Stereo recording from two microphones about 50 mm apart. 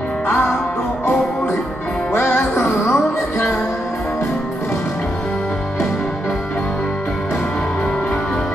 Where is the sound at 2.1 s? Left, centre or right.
Left.